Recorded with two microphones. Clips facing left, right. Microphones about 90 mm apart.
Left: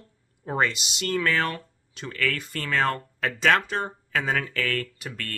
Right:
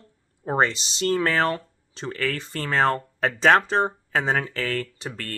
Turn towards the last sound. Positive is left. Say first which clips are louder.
# right 2 dB
turn(degrees=-30)  # may be behind; listen again after turning